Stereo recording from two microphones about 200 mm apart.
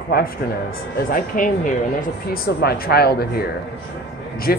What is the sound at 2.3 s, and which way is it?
A man's voice, 55° left (ahead or behind).